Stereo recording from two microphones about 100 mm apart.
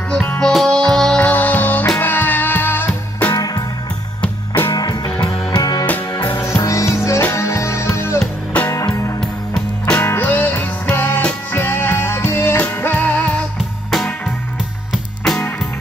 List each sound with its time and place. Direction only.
0.1 s music: 10° left (ahead or behind)
3.3 s music: 40° left (ahead or behind)
4.7 s music: 45° left (ahead or behind)
6.3 s music: 30° left (ahead or behind)
9.2 s music: 5° left (ahead or behind)
9.9 s music: 20° left (ahead or behind)
13.8 s music: centre (ahead or behind)